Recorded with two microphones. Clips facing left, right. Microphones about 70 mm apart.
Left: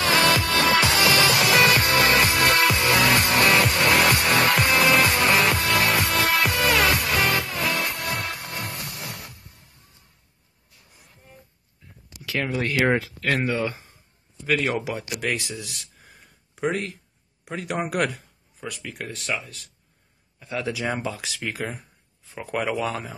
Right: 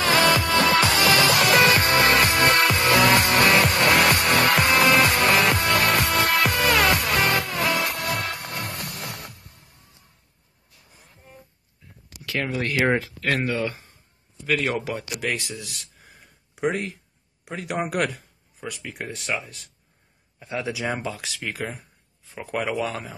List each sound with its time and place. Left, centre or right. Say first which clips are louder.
0.3 s music: right 1 dB; centre
0.6 s music: even; right
0.8 s music: right 1 dB; centre
2.5 s music: even; right
2.8 s music: right 2 dB; centre
12.2 s speech: left 1 dB; centre
18.8 s speech: right 1 dB; centre
20.8 s speech: even; centre